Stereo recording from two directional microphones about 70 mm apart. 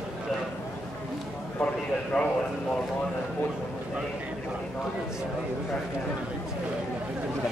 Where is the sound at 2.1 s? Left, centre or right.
Centre.